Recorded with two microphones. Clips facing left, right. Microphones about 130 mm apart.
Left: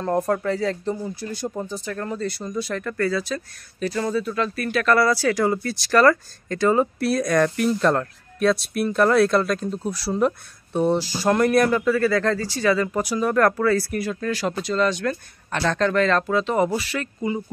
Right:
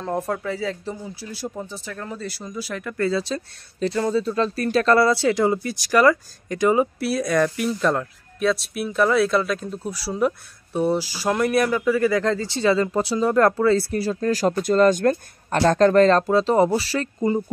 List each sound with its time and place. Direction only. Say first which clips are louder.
0.0 s speech: left 4 dB; centre (ahead or behind)
3.0 s speech: right 2 dB; 25° right (ahead or behind)